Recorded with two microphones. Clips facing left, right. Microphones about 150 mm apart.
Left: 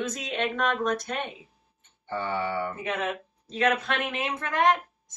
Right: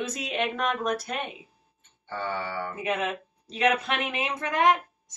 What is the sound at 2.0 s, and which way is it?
Speech, 20° left (ahead or behind).